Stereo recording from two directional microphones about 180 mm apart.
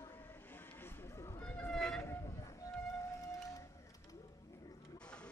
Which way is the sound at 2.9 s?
20° left (ahead or behind).